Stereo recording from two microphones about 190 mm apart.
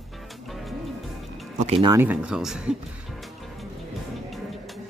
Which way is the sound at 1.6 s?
35° right (ahead or behind).